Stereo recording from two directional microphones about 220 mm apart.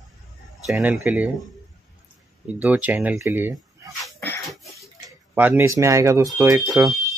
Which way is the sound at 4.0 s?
5° left (ahead or behind).